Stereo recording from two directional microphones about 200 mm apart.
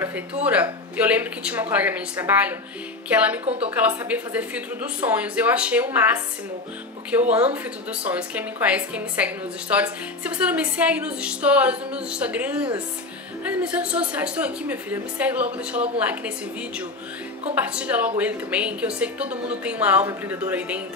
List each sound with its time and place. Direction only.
0.0 s a woman's voice: 5° right (ahead or behind)
3.4 s a woman's voice: 30° right (ahead or behind)
3.7 s a woman's voice: 5° right (ahead or behind)
17.6 s a woman's voice: 5° right (ahead or behind)